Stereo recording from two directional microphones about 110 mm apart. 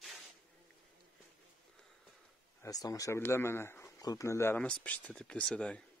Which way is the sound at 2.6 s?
35° left (ahead or behind).